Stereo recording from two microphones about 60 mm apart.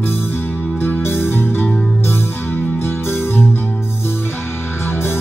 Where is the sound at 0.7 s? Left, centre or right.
Left.